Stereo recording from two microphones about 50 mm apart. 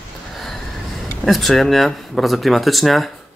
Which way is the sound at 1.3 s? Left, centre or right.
Centre.